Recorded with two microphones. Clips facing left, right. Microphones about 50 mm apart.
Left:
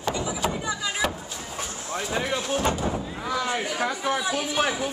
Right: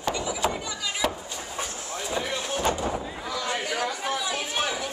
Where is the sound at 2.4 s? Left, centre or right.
Centre.